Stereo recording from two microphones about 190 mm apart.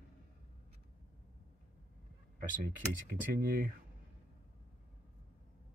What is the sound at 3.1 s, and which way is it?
Speech, 50° right (ahead or behind).